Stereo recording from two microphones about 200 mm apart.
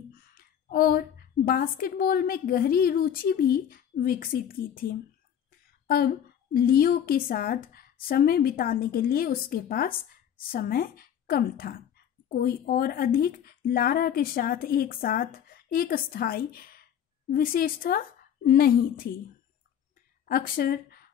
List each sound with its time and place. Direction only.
0.3 s a woman's voice: 45° left (ahead or behind)
20.2 s speech: 45° left (ahead or behind)